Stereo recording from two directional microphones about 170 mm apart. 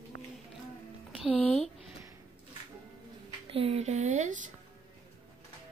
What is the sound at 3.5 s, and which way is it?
Speech, 35° right (ahead or behind).